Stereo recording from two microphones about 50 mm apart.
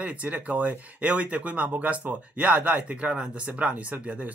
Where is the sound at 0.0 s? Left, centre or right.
Right.